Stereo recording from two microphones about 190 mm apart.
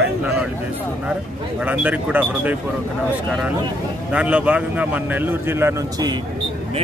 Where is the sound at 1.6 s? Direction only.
5° right (ahead or behind).